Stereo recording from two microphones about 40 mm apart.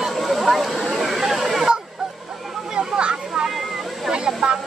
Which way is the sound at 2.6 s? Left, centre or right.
Centre.